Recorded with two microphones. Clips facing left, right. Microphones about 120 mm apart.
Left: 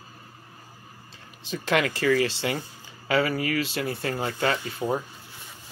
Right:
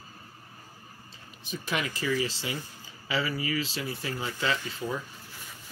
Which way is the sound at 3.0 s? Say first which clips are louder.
Left 6 dB; 55° left (ahead or behind).